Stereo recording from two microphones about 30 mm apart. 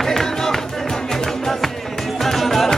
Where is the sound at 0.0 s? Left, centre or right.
Centre.